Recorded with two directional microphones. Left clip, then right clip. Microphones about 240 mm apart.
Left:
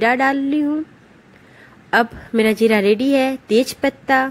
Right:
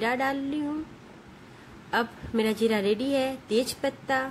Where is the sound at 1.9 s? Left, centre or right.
Left.